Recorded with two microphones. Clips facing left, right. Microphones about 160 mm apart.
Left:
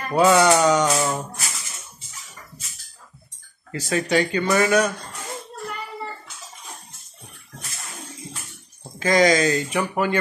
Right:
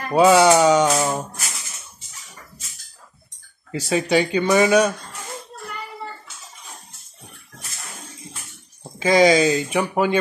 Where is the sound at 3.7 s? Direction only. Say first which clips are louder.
Right 2 dB; 15° right (ahead or behind).